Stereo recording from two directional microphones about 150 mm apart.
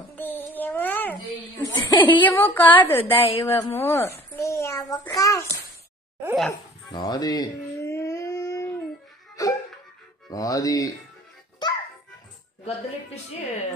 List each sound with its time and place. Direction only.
0.1 s child singing: 15° left (ahead or behind)
1.6 s chuckle: 25° left (ahead or behind)
2.0 s a child's voice: 10° left (ahead or behind)
3.1 s a woman's voice: 35° left (ahead or behind)
3.4 s a child's voice: 15° left (ahead or behind)
6.5 s dog: 30° left (ahead or behind)
9.4 s music: 25° left (ahead or behind)
10.3 s speech: 25° left (ahead or behind)
12.6 s a woman's voice: 45° left (ahead or behind)